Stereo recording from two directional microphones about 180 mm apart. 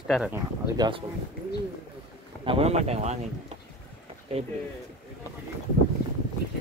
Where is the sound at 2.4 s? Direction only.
30° right (ahead or behind).